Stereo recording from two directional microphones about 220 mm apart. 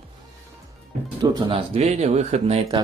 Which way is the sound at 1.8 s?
30° right (ahead or behind).